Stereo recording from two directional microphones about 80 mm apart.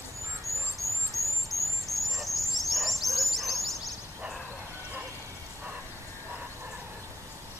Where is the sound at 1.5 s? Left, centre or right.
Centre.